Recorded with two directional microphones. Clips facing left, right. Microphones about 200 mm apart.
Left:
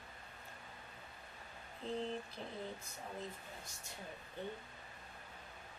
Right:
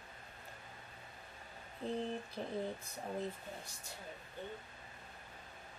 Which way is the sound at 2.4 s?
45° right (ahead or behind).